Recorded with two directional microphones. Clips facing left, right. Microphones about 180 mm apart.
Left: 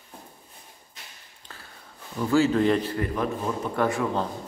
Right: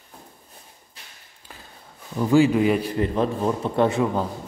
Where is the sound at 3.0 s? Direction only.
30° right (ahead or behind).